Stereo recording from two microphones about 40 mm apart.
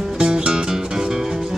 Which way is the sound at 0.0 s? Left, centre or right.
Centre.